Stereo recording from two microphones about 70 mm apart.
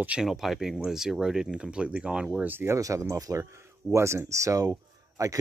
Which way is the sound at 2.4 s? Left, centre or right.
Right.